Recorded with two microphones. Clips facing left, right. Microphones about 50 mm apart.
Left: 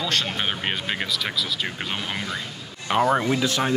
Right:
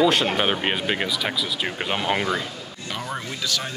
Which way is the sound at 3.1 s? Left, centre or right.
Left.